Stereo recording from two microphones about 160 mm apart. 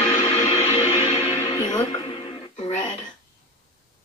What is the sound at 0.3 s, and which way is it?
Music, 40° left (ahead or behind).